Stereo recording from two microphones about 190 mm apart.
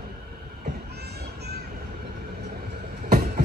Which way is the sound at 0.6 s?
55° right (ahead or behind).